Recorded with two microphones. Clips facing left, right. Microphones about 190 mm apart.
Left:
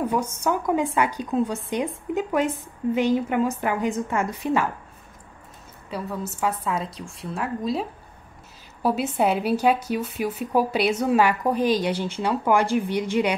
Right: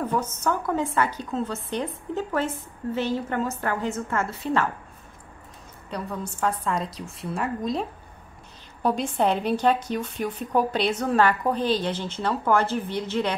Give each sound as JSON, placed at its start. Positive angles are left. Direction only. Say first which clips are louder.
{"t": 0.0, "sound": "a woman's voice", "louder": "left 2 dB", "side_deg": 10}
{"t": 5.9, "sound": "a woman's voice", "louder": "left 2 dB", "side_deg": 5}
{"t": 8.8, "sound": "a woman's voice", "louder": "left 1 dB", "side_deg": 5}